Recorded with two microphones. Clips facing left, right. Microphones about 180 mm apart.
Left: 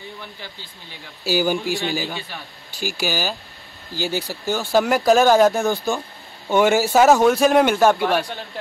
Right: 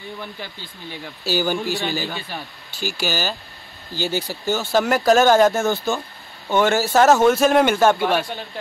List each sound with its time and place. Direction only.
1.2 s a man's voice: 10° left (ahead or behind)
6.5 s a man's voice: 15° left (ahead or behind)